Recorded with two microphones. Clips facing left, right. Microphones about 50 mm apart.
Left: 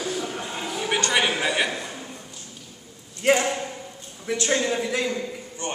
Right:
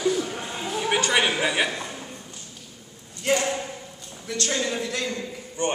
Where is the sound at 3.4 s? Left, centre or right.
Centre.